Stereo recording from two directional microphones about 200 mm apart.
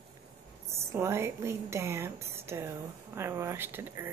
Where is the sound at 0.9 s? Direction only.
15° right (ahead or behind).